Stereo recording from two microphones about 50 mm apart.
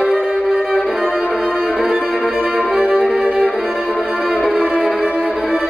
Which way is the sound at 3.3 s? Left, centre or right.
Centre.